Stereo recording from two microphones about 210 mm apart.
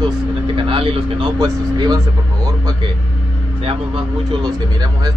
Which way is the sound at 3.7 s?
20° right (ahead or behind).